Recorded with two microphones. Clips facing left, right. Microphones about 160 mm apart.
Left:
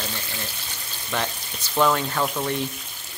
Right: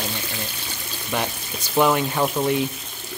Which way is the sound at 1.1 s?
10° right (ahead or behind).